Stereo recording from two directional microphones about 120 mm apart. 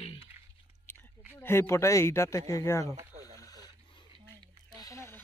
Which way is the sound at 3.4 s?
30° left (ahead or behind).